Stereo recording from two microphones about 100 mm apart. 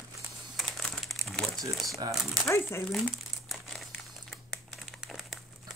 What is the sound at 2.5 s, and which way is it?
Speech, 30° left (ahead or behind).